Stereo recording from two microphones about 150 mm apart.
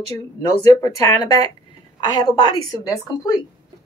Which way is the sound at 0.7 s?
20° left (ahead or behind).